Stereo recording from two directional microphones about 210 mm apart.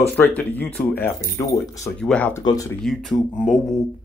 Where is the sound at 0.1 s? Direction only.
10° left (ahead or behind).